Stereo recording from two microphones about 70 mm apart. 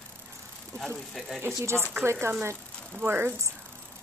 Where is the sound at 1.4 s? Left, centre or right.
Right.